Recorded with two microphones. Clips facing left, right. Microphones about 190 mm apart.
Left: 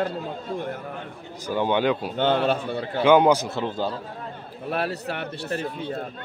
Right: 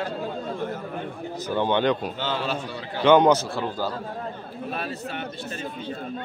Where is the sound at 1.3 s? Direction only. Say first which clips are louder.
Even; 10° left (ahead or behind).